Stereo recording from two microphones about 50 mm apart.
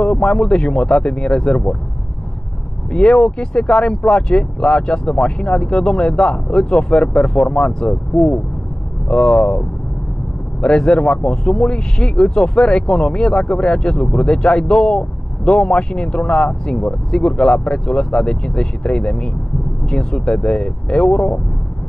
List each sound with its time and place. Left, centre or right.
0.0 s speech: centre
2.9 s speech: centre